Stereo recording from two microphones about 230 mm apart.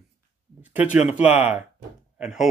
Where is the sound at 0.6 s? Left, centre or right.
Centre.